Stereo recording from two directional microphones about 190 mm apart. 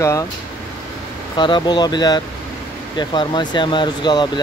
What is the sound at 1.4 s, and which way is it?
Speech, 25° left (ahead or behind).